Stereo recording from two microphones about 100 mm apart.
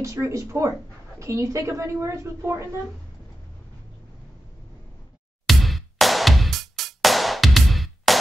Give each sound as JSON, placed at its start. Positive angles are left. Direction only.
{"t": 0.0, "sound": "a woman's voice", "side_deg": -30}
{"t": 5.5, "sound": "music", "side_deg": 0}